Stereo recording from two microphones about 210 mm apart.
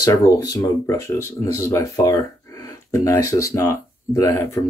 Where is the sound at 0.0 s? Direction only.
15° left (ahead or behind).